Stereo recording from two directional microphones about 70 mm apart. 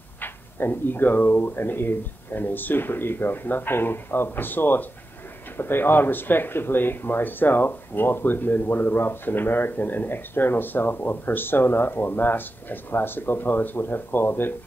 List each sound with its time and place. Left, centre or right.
0.2 s speech: left